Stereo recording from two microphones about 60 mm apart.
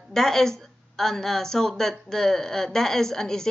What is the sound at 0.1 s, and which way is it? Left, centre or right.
Speech, centre.